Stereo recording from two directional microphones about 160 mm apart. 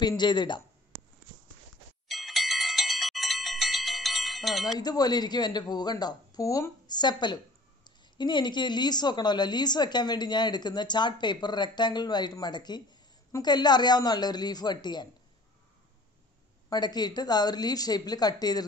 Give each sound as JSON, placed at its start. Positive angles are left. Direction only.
{"t": 0.2, "sound": "a woman's voice", "side_deg": 30}
{"t": 2.0, "sound": "bell", "side_deg": 0}
{"t": 4.7, "sound": "a woman's voice", "side_deg": 25}
{"t": 16.6, "sound": "a woman's voice", "side_deg": 25}